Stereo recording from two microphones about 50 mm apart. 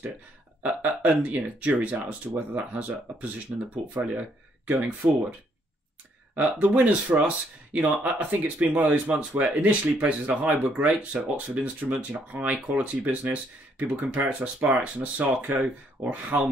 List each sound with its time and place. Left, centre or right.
0.6 s speech: right
5.0 s speech: right
6.3 s speech: right